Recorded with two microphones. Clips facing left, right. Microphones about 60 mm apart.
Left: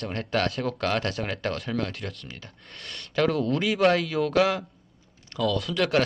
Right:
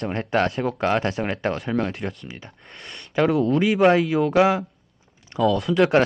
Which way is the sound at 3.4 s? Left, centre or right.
Centre.